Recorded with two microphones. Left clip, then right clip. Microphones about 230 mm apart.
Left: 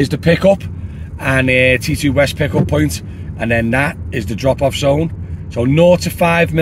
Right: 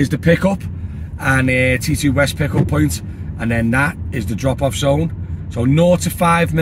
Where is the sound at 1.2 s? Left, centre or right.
Centre.